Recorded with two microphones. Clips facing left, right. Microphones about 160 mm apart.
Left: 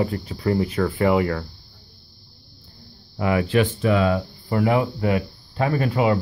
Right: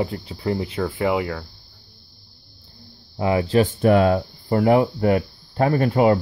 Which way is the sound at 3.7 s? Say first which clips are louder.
Right 4 dB; 50° right (ahead or behind).